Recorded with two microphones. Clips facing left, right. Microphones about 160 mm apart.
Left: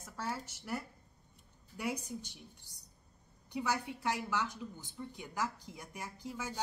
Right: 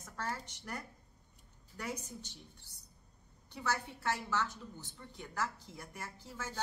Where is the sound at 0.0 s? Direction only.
10° left (ahead or behind).